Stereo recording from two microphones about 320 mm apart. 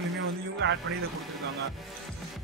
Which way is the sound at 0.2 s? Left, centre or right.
Right.